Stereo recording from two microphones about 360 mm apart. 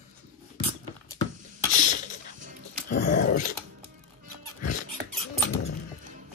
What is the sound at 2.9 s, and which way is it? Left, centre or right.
Dog, left.